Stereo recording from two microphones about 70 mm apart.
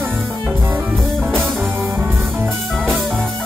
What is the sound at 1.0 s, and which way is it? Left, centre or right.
Music, centre.